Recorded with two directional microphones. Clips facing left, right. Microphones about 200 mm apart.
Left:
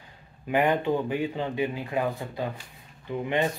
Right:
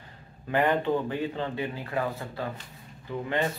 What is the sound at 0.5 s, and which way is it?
Speech, 15° left (ahead or behind).